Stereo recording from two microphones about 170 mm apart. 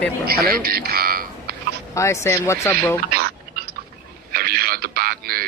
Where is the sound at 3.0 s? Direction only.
65° right (ahead or behind).